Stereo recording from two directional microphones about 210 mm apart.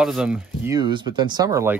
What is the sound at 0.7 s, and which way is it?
Speech, 20° right (ahead or behind).